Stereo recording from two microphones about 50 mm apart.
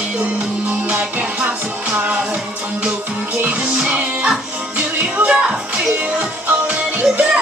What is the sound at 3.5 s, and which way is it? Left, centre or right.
Music, right.